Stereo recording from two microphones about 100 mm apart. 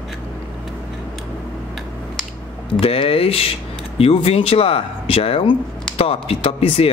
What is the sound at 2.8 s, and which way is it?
Speech, 75° left (ahead or behind).